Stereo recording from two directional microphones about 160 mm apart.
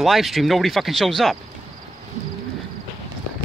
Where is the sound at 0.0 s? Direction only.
Centre (ahead or behind).